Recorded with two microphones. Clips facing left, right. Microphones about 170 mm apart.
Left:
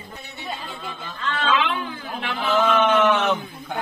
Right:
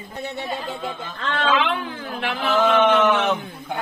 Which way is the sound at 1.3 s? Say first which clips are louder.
Right 2 dB; 50° right (ahead or behind).